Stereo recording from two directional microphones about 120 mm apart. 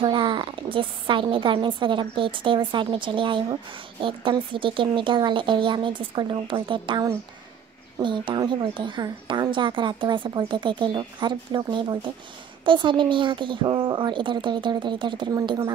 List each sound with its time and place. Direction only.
0.0 s a woman's voice: 45° right (ahead or behind)